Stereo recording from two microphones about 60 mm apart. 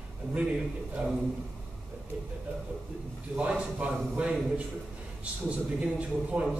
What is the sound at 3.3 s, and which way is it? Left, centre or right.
A man's voice, right.